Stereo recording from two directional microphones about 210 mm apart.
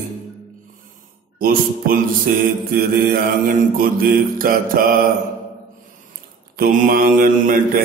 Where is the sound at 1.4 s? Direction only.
45° right (ahead or behind).